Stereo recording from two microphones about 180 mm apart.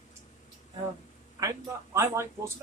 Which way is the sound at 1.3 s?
15° right (ahead or behind).